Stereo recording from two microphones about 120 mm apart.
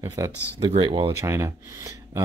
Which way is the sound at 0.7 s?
45° right (ahead or behind).